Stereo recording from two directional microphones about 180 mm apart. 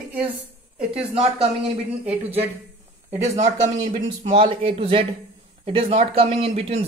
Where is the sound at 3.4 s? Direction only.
25° right (ahead or behind).